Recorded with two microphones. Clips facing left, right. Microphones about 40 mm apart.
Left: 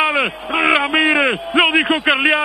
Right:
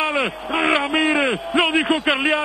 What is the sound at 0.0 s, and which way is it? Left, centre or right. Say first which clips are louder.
A man's voice: left 4 dB; centre.